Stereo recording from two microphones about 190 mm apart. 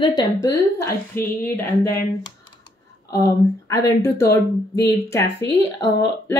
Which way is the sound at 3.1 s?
15° left (ahead or behind).